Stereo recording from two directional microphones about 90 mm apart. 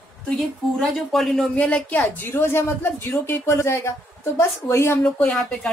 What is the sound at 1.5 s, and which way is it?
Speech, 15° left (ahead or behind).